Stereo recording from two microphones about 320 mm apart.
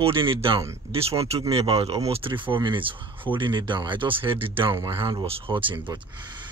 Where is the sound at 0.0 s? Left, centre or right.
Centre.